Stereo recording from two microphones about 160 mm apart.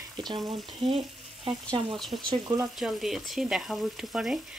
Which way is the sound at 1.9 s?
Centre (ahead or behind).